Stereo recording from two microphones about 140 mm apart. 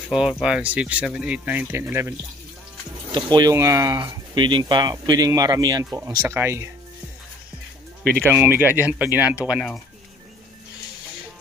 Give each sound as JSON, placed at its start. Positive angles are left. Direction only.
{"t": 0.1, "sound": "speech", "side_deg": -5}
{"t": 3.1, "sound": "speech", "side_deg": -35}
{"t": 8.0, "sound": "speech", "side_deg": 10}
{"t": 8.3, "sound": "speech", "side_deg": -15}